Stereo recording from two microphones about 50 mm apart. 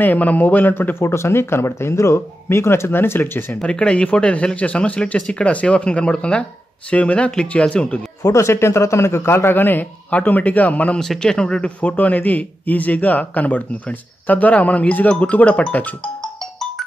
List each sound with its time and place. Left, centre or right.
0.0 s a man's voice: left
0.9 s speech: left
3.6 s a man's voice: left
8.3 s a man's voice: left
11.0 s speech: centre
12.0 s a man's voice: left